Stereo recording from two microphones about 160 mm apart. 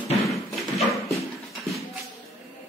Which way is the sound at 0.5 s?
Centre (ahead or behind).